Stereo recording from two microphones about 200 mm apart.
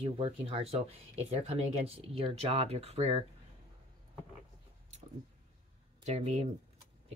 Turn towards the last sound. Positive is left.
turn(degrees=-35)  # may be behind; listen again after turning